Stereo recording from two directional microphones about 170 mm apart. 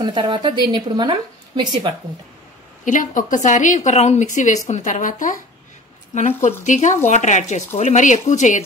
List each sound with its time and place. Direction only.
0.0 s speech: 25° right (ahead or behind)
2.8 s speech: 50° left (ahead or behind)